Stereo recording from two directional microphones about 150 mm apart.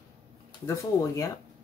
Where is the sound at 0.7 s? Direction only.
20° left (ahead or behind).